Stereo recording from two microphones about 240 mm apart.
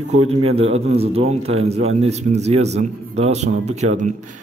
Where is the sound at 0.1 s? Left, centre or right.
Right.